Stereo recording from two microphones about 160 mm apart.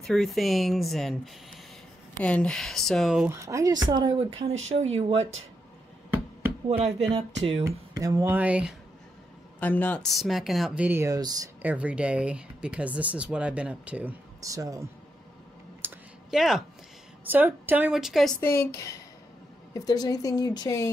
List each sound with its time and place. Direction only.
0.0 s speech: centre (ahead or behind)
3.3 s speech: 20° right (ahead or behind)
4.5 s speech: 40° right (ahead or behind)
6.8 s speech: 40° right (ahead or behind)
7.6 s speech: 20° right (ahead or behind)
9.6 s speech: 10° left (ahead or behind); by 11.5 s 25° right (ahead or behind)
11.6 s speech: 10° right (ahead or behind)
14.4 s speech: 20° right (ahead or behind)
15.8 s clicking: 15° right (ahead or behind)
16.3 s speech: centre (ahead or behind)
18.4 s a woman's voice: 15° left (ahead or behind)